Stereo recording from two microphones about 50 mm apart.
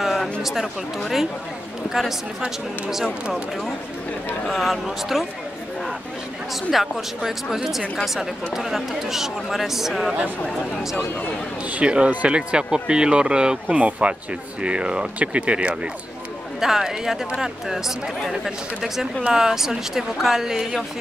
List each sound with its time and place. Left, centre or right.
0.0 s a sound: centre
2.9 s speech: centre
4.5 s speech: centre
6.7 s speech: centre
11.7 s speech: right
16.5 s speech: centre